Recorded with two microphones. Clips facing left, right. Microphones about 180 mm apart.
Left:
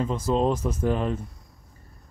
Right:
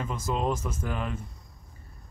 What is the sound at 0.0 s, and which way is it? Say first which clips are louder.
Speech: left 6 dB; 30° left (ahead or behind).